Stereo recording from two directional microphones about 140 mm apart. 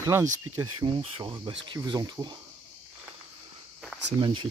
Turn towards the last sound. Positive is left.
turn(degrees=-35)  # may be behind; listen again after turning